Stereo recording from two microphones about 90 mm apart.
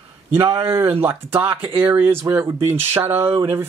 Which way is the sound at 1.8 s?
25° right (ahead or behind).